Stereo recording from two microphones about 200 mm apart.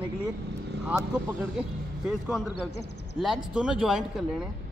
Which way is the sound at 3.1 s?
Centre (ahead or behind).